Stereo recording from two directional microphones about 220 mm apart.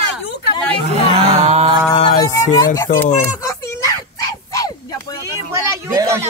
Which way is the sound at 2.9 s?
35° left (ahead or behind).